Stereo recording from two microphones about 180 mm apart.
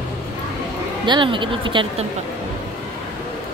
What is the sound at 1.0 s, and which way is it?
Speech, 25° right (ahead or behind).